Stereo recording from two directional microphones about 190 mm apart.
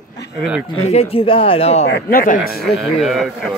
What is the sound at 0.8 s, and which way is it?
Speech, 35° left (ahead or behind).